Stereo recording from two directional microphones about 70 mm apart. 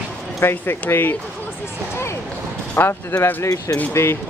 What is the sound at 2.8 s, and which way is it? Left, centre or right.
Speech, left.